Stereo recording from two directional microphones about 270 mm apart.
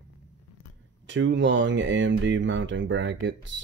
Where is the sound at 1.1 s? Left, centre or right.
Right.